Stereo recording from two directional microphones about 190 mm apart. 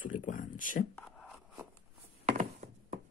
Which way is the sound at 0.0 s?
45° left (ahead or behind).